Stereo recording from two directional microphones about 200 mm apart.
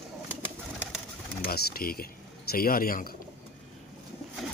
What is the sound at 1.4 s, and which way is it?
Speech, 50° left (ahead or behind).